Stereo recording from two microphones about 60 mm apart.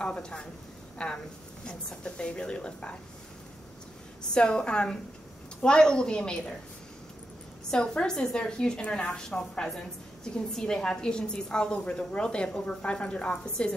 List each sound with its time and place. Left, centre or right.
0.0 s a woman's voice: centre
4.3 s a woman's voice: centre
7.7 s a woman's voice: centre